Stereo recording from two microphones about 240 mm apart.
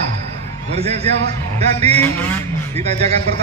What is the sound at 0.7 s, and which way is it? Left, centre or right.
A man's voice, right.